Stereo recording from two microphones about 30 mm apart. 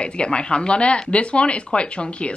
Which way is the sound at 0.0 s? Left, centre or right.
Left.